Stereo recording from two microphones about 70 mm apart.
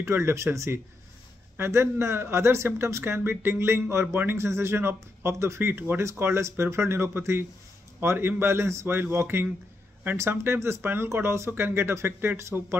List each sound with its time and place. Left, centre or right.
0.0 s speech: right